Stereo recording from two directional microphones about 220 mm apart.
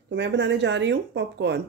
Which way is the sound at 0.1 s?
55° right (ahead or behind).